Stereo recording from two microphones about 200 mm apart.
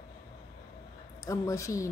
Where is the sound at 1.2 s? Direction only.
15° left (ahead or behind).